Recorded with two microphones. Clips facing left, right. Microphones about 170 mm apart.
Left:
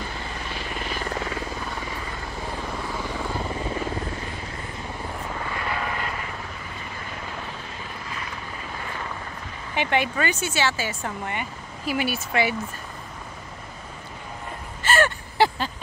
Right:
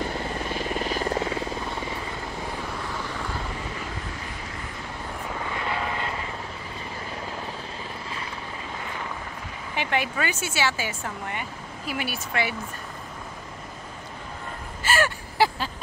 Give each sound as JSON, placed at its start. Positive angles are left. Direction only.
{"t": 0.6, "sound": "helicopter", "side_deg": -35}
{"t": 1.1, "sound": "helicopter", "side_deg": -25}
{"t": 5.4, "sound": "vehicle", "side_deg": -20}
{"t": 8.1, "sound": "helicopter", "side_deg": -30}
{"t": 9.8, "sound": "speech", "side_deg": 0}
{"t": 11.2, "sound": "speech", "side_deg": 0}
{"t": 14.8, "sound": "gasp", "side_deg": -5}